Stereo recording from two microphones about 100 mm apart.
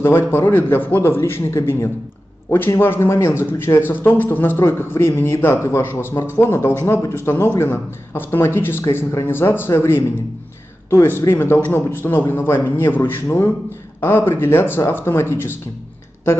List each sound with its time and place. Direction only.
0.0 s a man's voice: 25° left (ahead or behind)